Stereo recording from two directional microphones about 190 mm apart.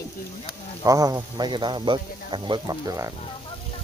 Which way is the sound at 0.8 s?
20° right (ahead or behind).